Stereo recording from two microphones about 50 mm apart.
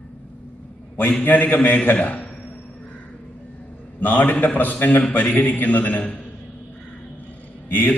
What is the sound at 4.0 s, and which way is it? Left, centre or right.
A man's voice, left.